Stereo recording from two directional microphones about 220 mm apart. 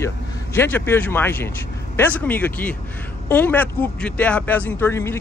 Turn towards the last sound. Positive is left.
turn(degrees=10)  # may be behind; listen again after turning